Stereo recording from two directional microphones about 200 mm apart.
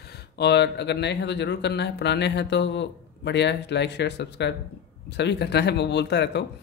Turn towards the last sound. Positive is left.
turn(degrees=60)  # may be behind; listen again after turning